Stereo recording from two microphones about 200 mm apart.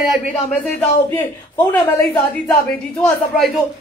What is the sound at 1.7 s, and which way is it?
Speech, 15° left (ahead or behind).